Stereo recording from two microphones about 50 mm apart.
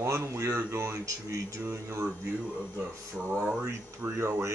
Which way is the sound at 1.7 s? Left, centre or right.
Right.